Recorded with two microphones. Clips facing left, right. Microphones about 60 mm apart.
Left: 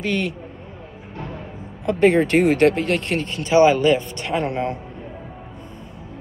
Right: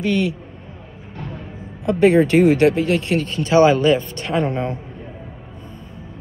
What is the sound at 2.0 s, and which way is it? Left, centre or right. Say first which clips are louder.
Speech: right 2 dB; left.